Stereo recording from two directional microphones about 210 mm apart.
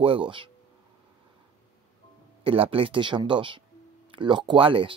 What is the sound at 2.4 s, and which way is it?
Speech, 25° right (ahead or behind).